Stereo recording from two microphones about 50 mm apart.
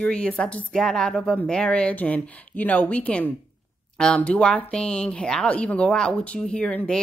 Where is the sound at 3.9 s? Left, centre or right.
Centre.